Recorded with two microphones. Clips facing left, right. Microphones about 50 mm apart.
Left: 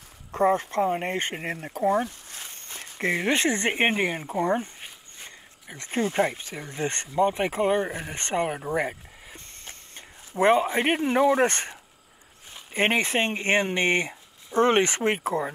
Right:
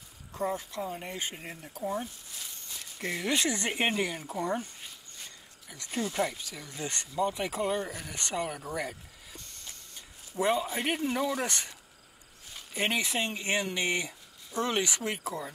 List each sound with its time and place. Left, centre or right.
0.3 s speech: left